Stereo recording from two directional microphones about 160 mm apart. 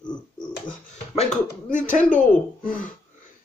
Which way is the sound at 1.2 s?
50° left (ahead or behind).